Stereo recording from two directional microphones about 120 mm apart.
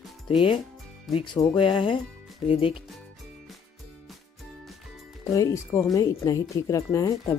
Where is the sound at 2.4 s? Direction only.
55° left (ahead or behind).